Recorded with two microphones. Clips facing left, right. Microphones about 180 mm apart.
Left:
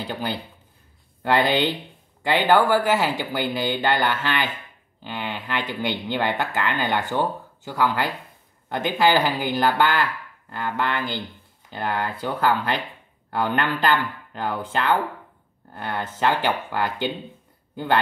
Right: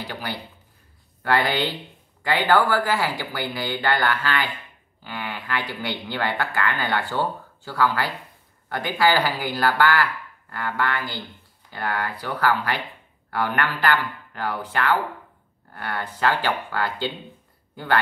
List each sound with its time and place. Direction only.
0.0 s speech: 25° left (ahead or behind)